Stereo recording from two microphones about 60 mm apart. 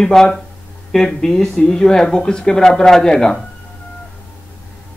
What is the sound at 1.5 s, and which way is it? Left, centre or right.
Speech, centre.